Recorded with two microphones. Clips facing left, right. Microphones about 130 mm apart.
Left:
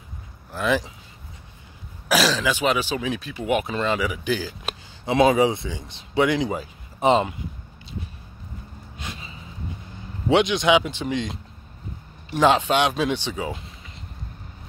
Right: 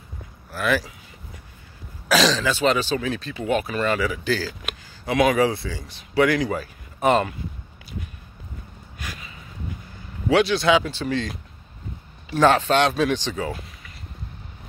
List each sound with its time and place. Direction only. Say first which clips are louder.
0.5 s speech: even; 20° left (ahead or behind)
2.0 s speech: right 1 dB; 10° left (ahead or behind)
4.6 s speech: left 1 dB; 25° left (ahead or behind)
8.9 s gasp: even; 25° left (ahead or behind)
10.2 s speech: even; 20° left (ahead or behind)
12.4 s speech: right 1 dB; 15° left (ahead or behind)